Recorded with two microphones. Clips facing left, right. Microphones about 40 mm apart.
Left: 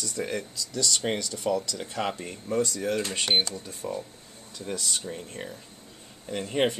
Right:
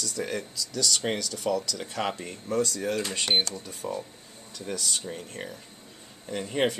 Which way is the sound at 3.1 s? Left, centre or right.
Centre.